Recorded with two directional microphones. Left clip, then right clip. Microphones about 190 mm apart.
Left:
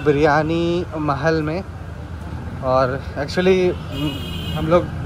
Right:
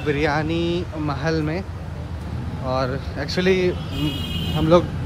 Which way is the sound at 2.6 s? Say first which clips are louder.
Left 6 dB; 5° right (ahead or behind).